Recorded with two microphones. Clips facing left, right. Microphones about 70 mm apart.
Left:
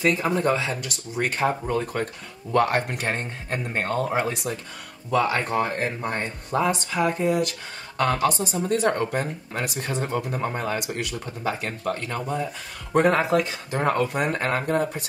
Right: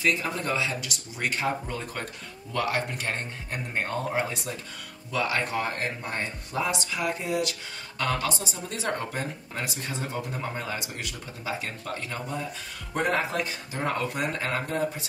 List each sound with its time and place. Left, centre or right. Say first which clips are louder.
0.0 s speech: left 6 dB; left
2.5 s speech: left 7 dB; left
5.1 s speech: left 5 dB; left
10.4 s speech: left 6 dB; left
12.9 s speech: left 7 dB; left